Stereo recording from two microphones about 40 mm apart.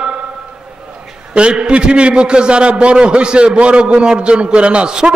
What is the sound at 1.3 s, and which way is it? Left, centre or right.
A man's voice, right.